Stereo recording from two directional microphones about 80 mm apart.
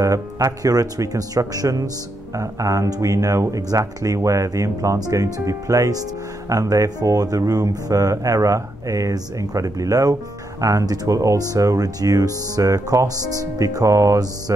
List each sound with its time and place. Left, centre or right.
0.0 s speech: right